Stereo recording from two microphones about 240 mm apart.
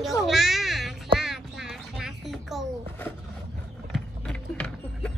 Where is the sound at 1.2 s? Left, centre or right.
Centre.